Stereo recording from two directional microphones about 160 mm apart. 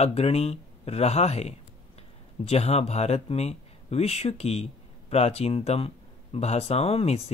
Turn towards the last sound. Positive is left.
turn(degrees=40)  # may be behind; listen again after turning